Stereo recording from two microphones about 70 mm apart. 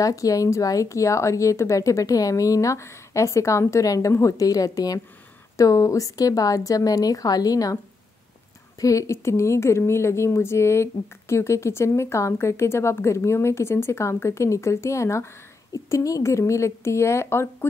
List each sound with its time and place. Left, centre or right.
0.0 s a woman's voice: left
5.6 s a woman's voice: left
8.7 s a woman's voice: left
15.7 s speech: left